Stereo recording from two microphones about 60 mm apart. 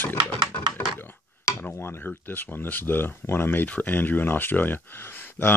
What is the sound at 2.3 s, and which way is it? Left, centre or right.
Speech, left.